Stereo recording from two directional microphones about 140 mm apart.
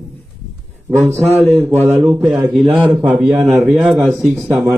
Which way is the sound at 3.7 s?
5° right (ahead or behind).